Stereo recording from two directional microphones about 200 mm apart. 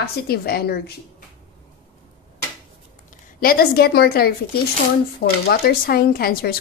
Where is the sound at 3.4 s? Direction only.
50° left (ahead or behind).